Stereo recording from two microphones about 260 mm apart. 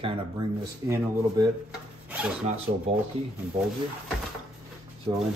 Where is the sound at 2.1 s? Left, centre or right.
Centre.